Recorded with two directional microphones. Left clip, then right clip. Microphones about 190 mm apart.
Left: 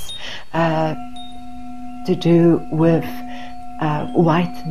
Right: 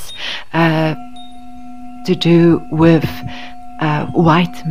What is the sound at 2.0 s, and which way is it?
Speech, 25° right (ahead or behind).